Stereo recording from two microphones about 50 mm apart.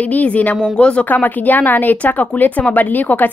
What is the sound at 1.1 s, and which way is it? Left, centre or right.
A woman's voice, left.